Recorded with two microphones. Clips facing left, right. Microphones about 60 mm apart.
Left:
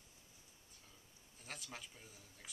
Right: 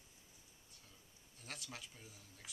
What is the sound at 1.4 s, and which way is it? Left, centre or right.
Speech, centre.